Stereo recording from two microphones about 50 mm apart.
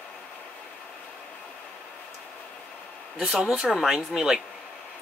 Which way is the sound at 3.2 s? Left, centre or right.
Centre.